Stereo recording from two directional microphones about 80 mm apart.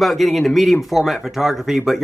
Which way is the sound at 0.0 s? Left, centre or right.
Centre.